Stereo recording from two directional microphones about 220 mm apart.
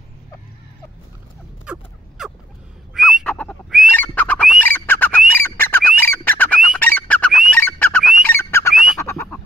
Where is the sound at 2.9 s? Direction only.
Centre (ahead or behind).